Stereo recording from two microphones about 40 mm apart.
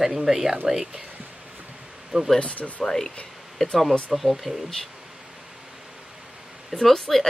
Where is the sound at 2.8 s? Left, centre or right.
Centre.